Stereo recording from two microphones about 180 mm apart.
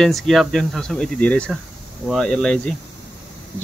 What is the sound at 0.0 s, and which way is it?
Speech, centre (ahead or behind).